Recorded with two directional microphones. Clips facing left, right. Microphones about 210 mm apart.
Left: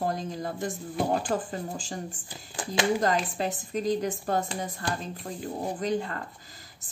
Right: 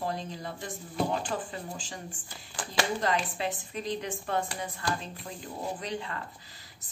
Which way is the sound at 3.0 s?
45° left (ahead or behind).